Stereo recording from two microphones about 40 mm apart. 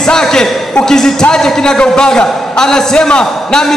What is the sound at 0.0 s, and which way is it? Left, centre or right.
A man's voice, centre.